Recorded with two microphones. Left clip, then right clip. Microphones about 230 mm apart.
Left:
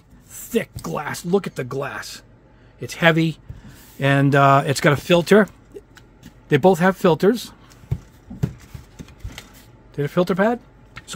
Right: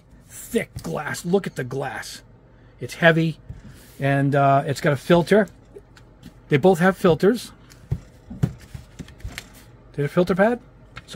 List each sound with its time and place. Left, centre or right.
0.3 s speech: centre
4.0 s speech: left
6.5 s speech: centre
9.9 s speech: centre